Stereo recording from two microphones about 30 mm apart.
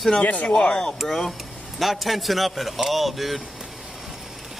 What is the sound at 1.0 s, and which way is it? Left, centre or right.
A man's voice, centre.